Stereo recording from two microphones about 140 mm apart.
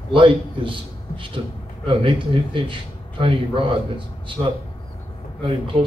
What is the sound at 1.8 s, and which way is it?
A man's voice, 40° right (ahead or behind).